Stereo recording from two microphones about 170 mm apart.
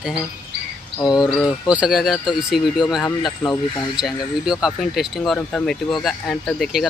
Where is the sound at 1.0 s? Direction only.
25° left (ahead or behind).